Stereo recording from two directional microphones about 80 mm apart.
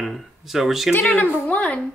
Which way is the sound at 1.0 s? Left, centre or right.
Centre.